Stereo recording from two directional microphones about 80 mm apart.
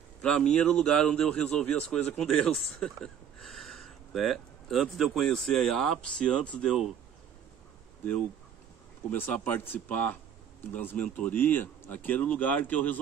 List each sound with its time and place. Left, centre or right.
0.2 s a man's voice: centre
9.3 s speech: left